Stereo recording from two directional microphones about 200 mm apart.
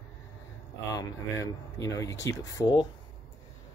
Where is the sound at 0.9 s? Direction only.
15° left (ahead or behind).